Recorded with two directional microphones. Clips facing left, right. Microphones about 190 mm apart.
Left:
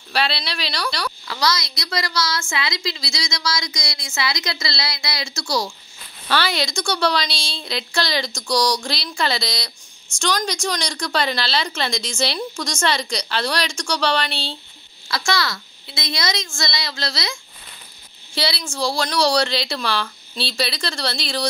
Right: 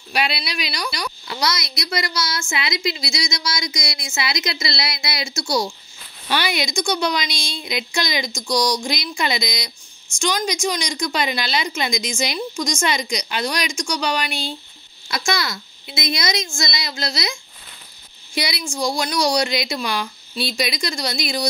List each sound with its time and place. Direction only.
0.1 s speech: 15° right (ahead or behind)
1.2 s a woman's voice: 25° right (ahead or behind)